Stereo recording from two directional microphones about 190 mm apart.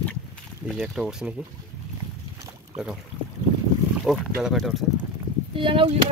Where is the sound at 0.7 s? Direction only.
Centre (ahead or behind).